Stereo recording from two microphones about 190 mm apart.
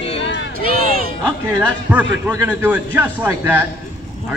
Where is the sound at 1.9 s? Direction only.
10° right (ahead or behind).